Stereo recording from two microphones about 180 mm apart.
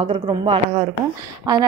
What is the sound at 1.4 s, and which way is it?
Speech, 20° right (ahead or behind).